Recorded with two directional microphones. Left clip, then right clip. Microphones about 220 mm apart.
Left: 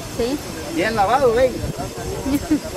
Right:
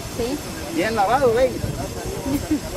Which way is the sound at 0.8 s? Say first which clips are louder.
Left 2 dB; centre (ahead or behind).